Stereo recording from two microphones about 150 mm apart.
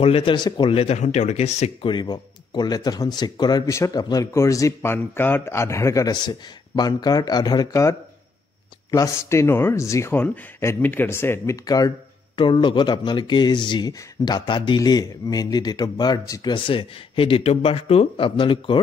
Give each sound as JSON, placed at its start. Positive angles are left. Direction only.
{"t": 0.0, "sound": "speech", "side_deg": 40}
{"t": 1.9, "sound": "speech", "side_deg": 30}
{"t": 8.9, "sound": "speech", "side_deg": 20}